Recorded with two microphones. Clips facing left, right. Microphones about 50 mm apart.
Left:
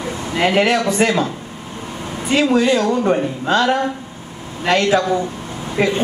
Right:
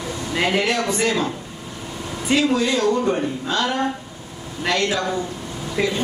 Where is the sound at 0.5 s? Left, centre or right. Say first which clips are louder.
Left 6 dB; left.